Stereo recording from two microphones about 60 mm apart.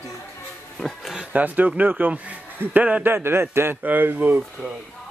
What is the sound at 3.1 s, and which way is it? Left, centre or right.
A man's voice, right.